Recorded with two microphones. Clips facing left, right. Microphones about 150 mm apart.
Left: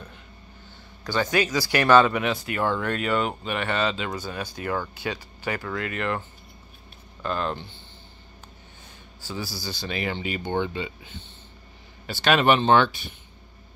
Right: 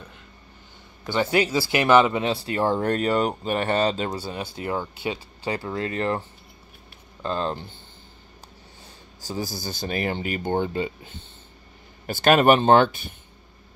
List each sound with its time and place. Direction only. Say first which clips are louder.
1.0 s speech: right 2 dB; 25° right (ahead or behind)
9.2 s speech: right 3 dB; 45° right (ahead or behind)